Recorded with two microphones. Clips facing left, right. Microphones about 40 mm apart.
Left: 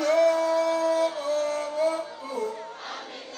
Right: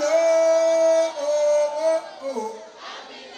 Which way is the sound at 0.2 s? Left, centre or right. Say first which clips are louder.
Right 4 dB; right.